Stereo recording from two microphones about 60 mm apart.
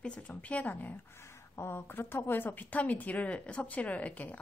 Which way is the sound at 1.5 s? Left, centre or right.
Left.